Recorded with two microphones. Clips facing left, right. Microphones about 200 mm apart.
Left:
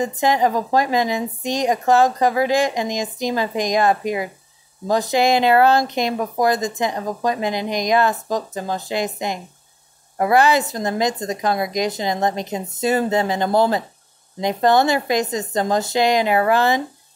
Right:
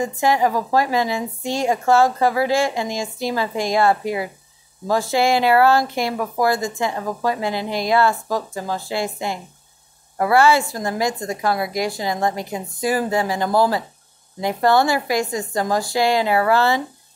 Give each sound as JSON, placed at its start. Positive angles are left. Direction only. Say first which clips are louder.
{"t": 0.0, "sound": "speech", "louder": "even", "side_deg": 20}